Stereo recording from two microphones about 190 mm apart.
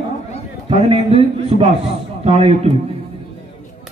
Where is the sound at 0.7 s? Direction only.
30° right (ahead or behind).